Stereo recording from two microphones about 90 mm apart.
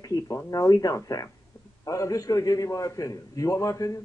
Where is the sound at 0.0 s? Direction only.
40° left (ahead or behind).